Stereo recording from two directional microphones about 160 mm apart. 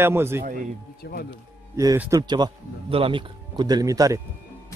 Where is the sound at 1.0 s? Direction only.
90° left.